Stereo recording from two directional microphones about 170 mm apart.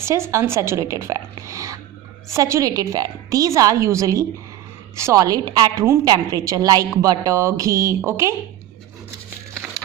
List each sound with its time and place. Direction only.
0.0 s a woman's voice: 15° right (ahead or behind)